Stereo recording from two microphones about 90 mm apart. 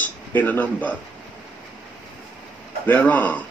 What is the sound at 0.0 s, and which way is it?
Speech, 20° left (ahead or behind).